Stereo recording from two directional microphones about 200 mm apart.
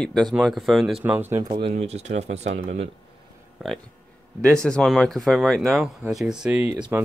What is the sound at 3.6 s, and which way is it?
Speech, 5° right (ahead or behind).